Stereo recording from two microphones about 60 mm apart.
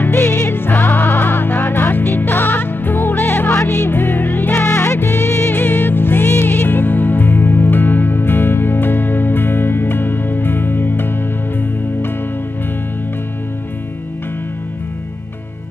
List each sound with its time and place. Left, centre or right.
0.0 s music: left
4.6 s music: left
5.5 s music: left